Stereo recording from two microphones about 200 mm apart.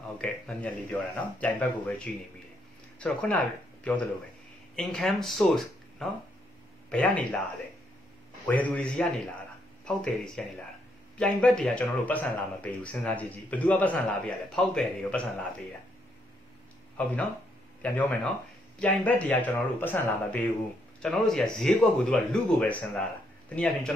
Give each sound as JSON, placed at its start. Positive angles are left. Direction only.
{"t": 0.2, "sound": "a man's voice", "side_deg": 5}
{"t": 8.5, "sound": "a man's voice", "side_deg": 10}
{"t": 16.9, "sound": "a man's voice", "side_deg": 10}